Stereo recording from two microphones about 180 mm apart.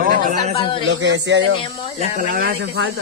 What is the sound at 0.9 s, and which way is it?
Speech, 85° right.